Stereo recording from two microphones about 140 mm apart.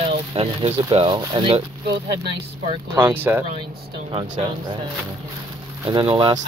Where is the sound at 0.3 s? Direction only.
40° right (ahead or behind).